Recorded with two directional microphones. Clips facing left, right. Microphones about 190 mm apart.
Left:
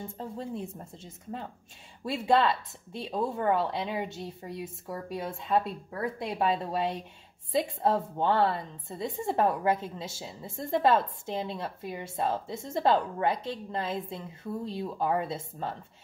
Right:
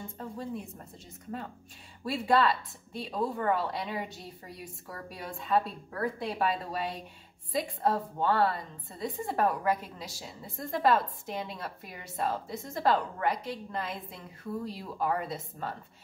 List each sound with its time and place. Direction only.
0.2 s a woman's voice: 25° left (ahead or behind)